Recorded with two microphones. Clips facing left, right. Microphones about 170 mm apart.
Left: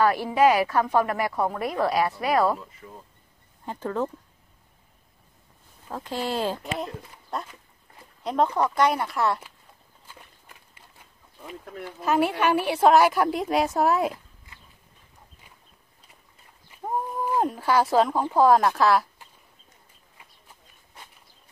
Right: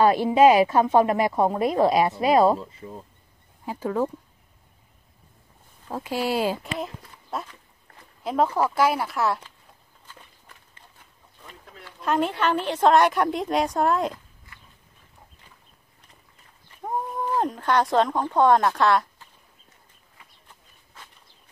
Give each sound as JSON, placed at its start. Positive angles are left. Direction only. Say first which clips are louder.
{"t": 0.0, "sound": "a woman's voice", "louder": "right 4 dB", "side_deg": -20}
{"t": 3.6, "sound": "speech", "louder": "right 3 dB", "side_deg": -10}
{"t": 5.9, "sound": "a woman's voice", "louder": "right 3 dB", "side_deg": -10}
{"t": 11.6, "sound": "a sound", "louder": "left 11 dB", "side_deg": 50}
{"t": 12.0, "sound": "a woman's voice", "louder": "left 1 dB", "side_deg": 5}
{"t": 16.7, "sound": "speech", "louder": "even", "side_deg": 5}